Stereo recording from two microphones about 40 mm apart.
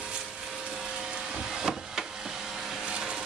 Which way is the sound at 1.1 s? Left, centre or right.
Right.